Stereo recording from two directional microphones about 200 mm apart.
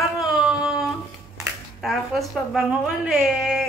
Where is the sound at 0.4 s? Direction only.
5° right (ahead or behind).